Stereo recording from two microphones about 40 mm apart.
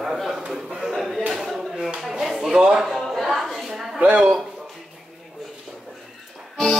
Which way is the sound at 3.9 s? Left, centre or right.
Right.